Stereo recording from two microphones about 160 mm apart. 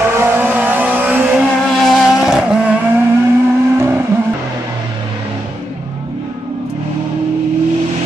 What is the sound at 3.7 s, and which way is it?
Vehicle, 15° right (ahead or behind).